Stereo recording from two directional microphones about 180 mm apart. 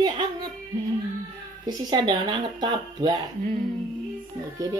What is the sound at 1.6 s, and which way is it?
Speech, 20° right (ahead or behind).